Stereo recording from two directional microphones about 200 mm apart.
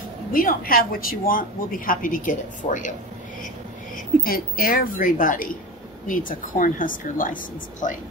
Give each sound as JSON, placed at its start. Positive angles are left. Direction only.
{"t": 0.3, "sound": "speech", "side_deg": 45}
{"t": 4.2, "sound": "speech", "side_deg": 45}